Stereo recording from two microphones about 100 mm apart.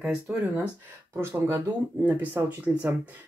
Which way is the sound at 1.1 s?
25° right (ahead or behind).